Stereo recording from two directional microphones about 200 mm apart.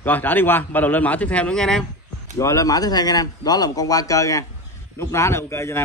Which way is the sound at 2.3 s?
15° left (ahead or behind).